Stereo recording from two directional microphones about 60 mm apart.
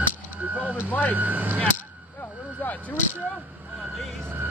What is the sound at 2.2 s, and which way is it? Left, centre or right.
Vehicle, left.